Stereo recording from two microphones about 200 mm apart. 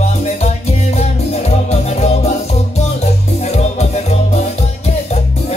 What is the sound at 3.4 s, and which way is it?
Music, 35° left (ahead or behind).